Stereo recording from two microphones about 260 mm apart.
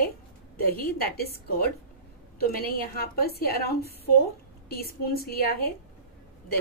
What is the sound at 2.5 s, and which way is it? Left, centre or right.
A woman's voice, left.